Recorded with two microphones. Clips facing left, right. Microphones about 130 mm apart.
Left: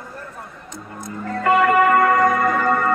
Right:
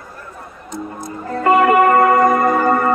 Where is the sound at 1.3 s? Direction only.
25° right (ahead or behind).